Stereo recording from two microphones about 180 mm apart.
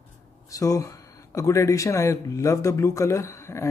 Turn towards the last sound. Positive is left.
turn(degrees=15)  # may be behind; listen again after turning